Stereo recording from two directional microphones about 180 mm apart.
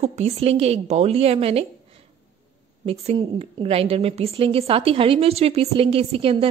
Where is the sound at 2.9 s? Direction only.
35° right (ahead or behind).